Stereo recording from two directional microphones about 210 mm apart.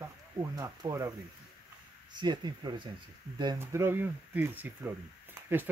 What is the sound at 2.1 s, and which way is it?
Speech, 20° right (ahead or behind).